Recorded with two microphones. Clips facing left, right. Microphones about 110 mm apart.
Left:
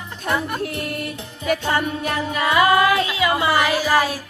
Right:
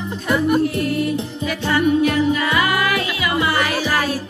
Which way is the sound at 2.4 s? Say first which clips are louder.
Left 3 dB; 25° left (ahead or behind).